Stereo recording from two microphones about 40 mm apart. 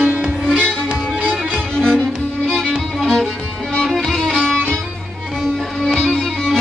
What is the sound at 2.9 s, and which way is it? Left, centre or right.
Music, centre.